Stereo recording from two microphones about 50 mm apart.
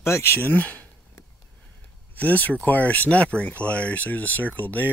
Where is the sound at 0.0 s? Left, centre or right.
Left.